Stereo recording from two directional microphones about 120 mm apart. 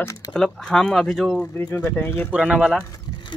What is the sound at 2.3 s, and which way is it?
Speech, 5° right (ahead or behind).